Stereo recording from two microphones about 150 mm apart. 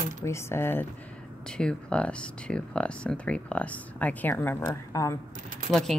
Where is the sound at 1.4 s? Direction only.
5° left (ahead or behind).